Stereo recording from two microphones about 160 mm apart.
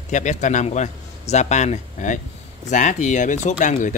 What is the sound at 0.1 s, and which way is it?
A man's voice, 50° left (ahead or behind).